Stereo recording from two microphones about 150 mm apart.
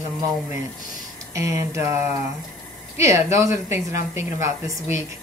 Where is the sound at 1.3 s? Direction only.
20° right (ahead or behind).